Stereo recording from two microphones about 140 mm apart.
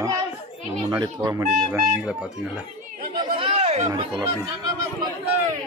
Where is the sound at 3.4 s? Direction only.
45° right (ahead or behind).